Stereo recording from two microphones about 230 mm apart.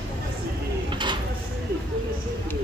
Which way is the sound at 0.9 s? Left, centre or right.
Centre.